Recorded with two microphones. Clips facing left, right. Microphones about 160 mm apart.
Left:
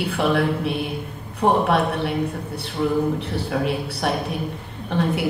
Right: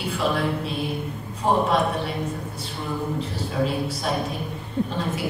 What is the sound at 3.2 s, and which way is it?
A woman's voice, 65° left (ahead or behind).